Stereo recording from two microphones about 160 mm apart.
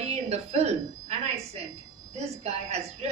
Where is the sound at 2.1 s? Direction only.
40° right (ahead or behind).